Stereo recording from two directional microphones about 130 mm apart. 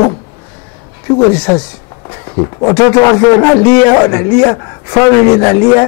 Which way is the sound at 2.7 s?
20° left (ahead or behind).